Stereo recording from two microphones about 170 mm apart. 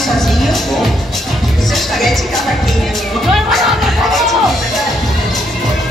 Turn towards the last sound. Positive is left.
turn(degrees=0)  # may be behind; listen again after turning